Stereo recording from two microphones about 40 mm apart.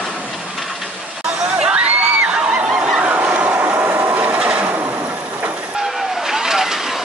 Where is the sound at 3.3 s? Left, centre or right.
Right.